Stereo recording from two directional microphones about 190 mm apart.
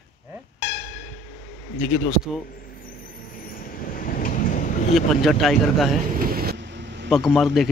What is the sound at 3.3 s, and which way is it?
Vehicle, 50° left (ahead or behind).